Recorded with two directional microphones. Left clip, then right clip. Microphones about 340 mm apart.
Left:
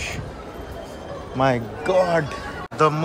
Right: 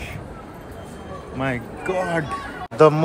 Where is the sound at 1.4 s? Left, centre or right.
Centre.